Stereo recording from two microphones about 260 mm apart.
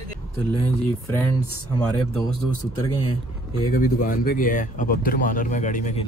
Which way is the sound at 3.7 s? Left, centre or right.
Left.